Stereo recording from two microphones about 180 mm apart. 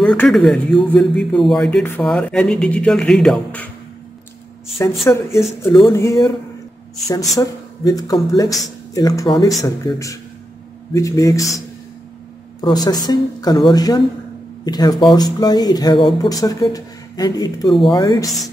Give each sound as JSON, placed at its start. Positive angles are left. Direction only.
{"t": 0.0, "sound": "speech", "side_deg": 5}
{"t": 5.0, "sound": "speech", "side_deg": 15}
{"t": 7.3, "sound": "speech", "side_deg": 20}